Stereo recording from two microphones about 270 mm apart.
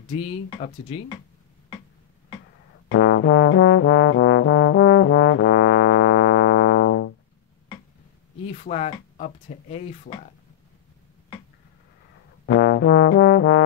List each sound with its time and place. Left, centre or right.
0.1 s speech: left
2.9 s trombone: left
8.5 s speech: left
10.1 s speech: left
12.4 s music: left